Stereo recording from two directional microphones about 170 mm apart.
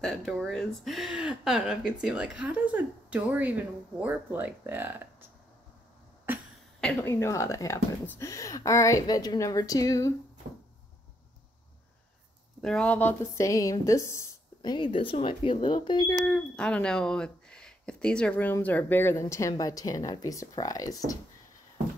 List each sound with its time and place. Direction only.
0.0 s speech: 5° left (ahead or behind)
7.1 s a woman's voice: 15° left (ahead or behind)
12.6 s a woman's voice: 5° left (ahead or behind); by 16.2 s 25° left (ahead or behind)
16.3 s a woman's voice: 10° left (ahead or behind)